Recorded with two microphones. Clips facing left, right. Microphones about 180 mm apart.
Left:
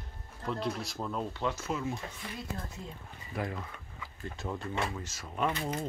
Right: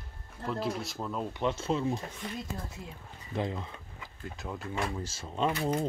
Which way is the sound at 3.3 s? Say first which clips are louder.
Right 3 dB; 25° right (ahead or behind).